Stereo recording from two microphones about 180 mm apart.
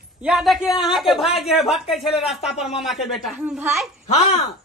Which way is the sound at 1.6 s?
Centre (ahead or behind).